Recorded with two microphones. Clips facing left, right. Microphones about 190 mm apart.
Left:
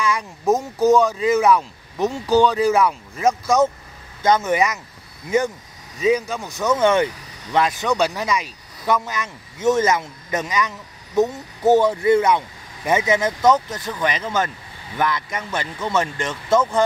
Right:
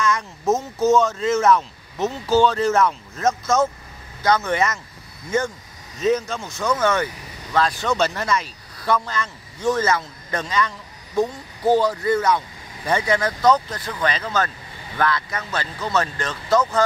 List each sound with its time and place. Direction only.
0.0 s speech: 10° left (ahead or behind)
5.9 s speech: 10° left (ahead or behind)